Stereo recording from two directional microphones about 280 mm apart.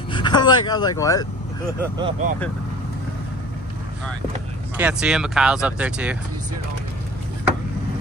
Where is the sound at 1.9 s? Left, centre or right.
Centre.